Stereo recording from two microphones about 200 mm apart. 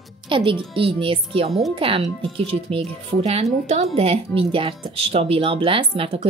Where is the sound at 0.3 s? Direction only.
25° right (ahead or behind).